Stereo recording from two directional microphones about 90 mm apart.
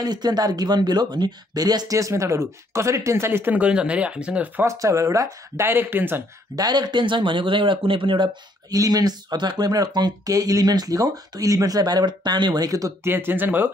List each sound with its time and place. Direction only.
0.0 s speech: 50° right (ahead or behind); by 4.6 s 15° right (ahead or behind)
4.6 s speech: 35° right (ahead or behind)
5.7 s speech: 25° right (ahead or behind)
6.5 s speech: 50° right (ahead or behind); by 8.3 s 70° right (ahead or behind)
8.6 s speech: 45° right (ahead or behind)
13.0 s speech: 25° right (ahead or behind)